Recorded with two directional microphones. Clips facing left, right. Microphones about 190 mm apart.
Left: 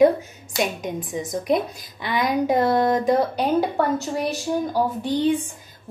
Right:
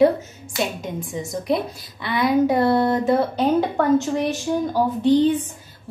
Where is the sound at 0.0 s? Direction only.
15° left (ahead or behind).